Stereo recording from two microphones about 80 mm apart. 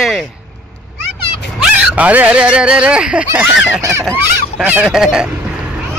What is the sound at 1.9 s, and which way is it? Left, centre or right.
Fowl, centre.